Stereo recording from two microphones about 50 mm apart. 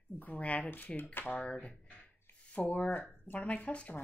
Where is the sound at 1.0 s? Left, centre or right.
Left.